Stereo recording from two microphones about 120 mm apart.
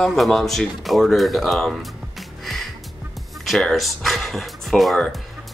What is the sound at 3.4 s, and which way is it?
Speech, centre (ahead or behind).